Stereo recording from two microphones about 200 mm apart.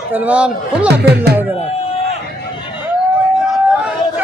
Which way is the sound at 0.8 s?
55° right (ahead or behind).